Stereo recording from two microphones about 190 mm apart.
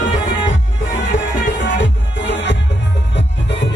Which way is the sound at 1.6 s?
65° left (ahead or behind).